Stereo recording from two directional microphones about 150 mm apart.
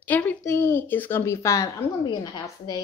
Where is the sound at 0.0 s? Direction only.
10° left (ahead or behind).